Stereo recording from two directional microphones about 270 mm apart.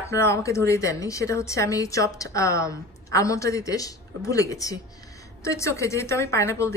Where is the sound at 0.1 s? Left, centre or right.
Centre.